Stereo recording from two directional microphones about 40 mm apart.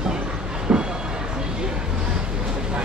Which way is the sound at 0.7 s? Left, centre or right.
Right.